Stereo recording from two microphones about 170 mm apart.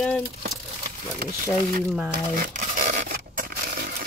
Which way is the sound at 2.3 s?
50° right (ahead or behind).